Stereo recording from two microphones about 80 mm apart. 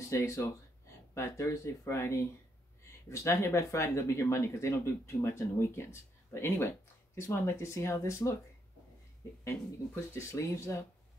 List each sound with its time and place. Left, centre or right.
0.0 s speech: left
10.1 s speech: left